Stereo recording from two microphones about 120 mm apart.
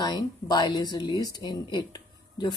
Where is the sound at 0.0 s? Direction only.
35° left (ahead or behind).